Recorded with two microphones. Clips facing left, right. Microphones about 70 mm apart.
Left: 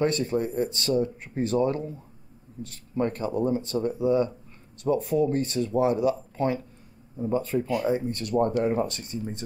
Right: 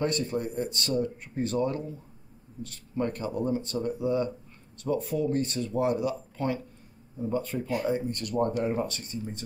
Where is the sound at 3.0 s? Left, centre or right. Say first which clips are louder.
Left 4 dB; left.